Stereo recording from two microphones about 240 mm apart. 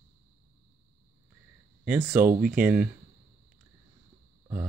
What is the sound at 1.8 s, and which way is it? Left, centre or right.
Speech, centre.